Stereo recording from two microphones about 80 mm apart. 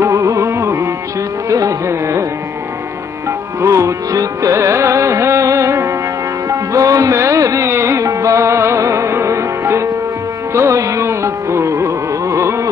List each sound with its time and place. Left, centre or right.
0.0 s music: right
1.5 s carnatic music: right
3.3 s music: right